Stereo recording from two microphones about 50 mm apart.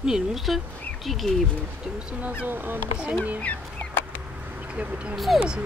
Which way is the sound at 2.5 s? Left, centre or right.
Right.